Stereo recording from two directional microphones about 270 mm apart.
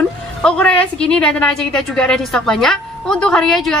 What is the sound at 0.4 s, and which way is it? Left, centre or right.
A woman's voice, centre.